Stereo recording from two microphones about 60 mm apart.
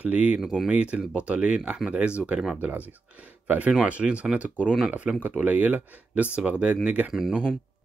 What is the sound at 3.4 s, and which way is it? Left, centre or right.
Speech, right.